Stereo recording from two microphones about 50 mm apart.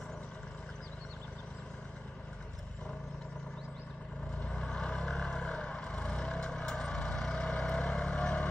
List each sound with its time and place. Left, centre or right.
4.4 s vehicle: centre